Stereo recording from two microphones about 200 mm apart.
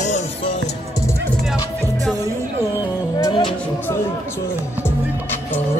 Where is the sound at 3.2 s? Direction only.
20° left (ahead or behind).